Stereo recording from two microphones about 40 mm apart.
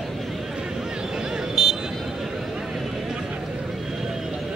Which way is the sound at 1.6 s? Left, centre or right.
Centre.